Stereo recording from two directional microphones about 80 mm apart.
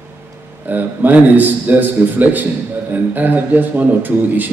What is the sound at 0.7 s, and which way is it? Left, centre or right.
A man's voice, right.